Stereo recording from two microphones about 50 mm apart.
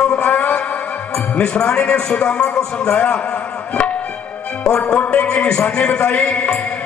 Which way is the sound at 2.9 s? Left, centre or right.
Left.